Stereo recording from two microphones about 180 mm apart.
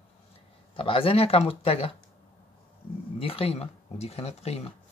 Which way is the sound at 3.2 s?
30° left (ahead or behind).